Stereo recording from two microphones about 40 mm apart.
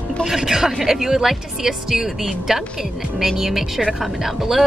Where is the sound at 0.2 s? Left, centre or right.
Centre.